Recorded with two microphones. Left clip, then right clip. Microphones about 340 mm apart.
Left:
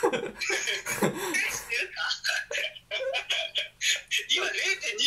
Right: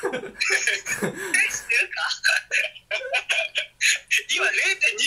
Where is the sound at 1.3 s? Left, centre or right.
Right.